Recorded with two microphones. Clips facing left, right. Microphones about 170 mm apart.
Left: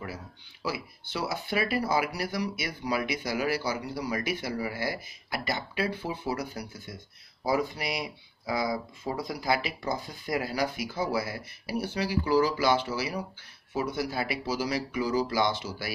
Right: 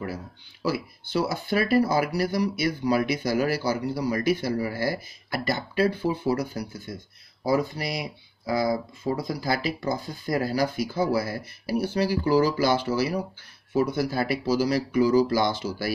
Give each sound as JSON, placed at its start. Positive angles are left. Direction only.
{"t": 0.0, "sound": "speech", "side_deg": -40}